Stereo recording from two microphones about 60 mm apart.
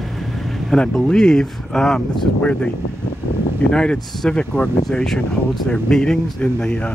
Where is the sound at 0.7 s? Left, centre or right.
Centre.